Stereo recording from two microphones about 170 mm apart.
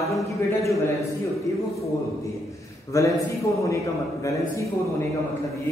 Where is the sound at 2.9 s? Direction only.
20° left (ahead or behind).